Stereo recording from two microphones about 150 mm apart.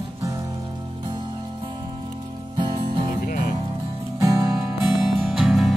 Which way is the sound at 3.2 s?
75° left (ahead or behind).